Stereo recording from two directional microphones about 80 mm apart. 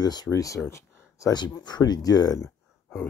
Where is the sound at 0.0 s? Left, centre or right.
Left.